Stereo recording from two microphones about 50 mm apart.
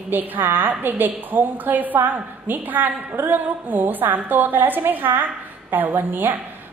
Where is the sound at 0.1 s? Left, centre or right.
Right.